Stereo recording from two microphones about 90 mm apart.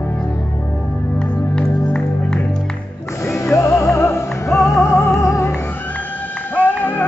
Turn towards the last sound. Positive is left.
turn(degrees=20)  # may be behind; listen again after turning